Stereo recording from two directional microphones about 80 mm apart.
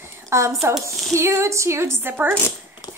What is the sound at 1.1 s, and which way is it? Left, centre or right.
A woman's voice, right.